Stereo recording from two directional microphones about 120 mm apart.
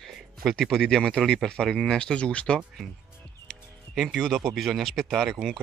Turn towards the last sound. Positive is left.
turn(degrees=0)  # may be behind; listen again after turning